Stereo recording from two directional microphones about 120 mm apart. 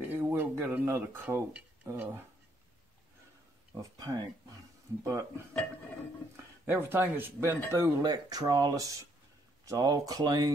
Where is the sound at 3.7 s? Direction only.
30° right (ahead or behind).